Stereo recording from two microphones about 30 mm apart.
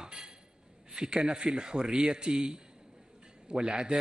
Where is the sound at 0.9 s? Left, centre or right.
Right.